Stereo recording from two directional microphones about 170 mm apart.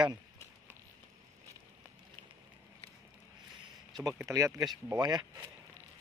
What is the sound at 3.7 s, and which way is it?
Speech, 20° right (ahead or behind).